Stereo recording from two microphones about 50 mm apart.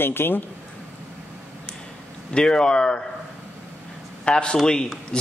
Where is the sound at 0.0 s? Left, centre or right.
Left.